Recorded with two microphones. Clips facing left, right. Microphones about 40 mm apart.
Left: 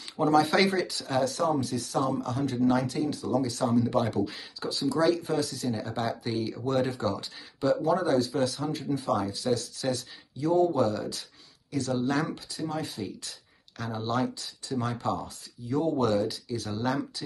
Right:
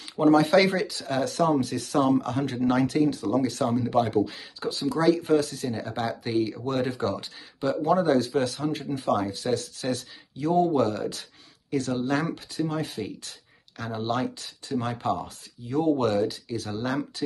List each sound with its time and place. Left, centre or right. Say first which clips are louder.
0.1 s speech: right 4 dB; right